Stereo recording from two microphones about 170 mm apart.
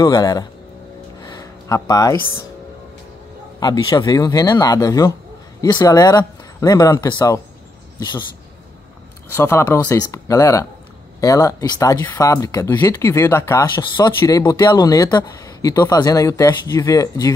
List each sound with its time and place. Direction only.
0.0 s speech: 25° left (ahead or behind)
1.2 s a sound: 20° left (ahead or behind)
3.5 s speech: 25° left (ahead or behind)
9.3 s speech: 15° left (ahead or behind)